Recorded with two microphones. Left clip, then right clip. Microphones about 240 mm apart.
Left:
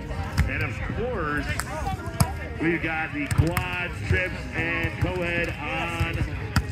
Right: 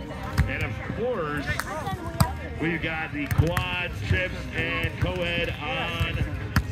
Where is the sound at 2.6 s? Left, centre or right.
Right.